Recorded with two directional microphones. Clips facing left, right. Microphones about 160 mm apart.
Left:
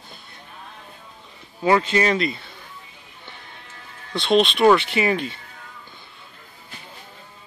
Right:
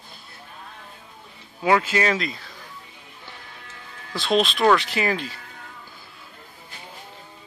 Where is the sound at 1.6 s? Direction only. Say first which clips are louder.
Left 2 dB; 5° right (ahead or behind).